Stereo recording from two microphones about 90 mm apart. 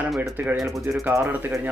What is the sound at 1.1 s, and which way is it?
Speech, 20° right (ahead or behind).